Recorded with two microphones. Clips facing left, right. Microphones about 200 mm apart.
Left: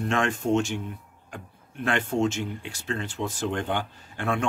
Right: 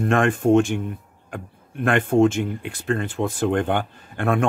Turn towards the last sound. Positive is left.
turn(degrees=-55)  # may be behind; listen again after turning